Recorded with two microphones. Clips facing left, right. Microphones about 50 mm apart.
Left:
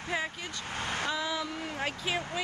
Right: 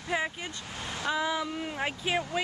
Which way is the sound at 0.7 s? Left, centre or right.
Left.